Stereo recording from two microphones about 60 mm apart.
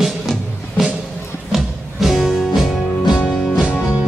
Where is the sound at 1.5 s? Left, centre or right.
Centre.